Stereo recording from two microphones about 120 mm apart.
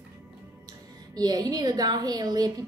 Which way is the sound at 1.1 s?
35° right (ahead or behind).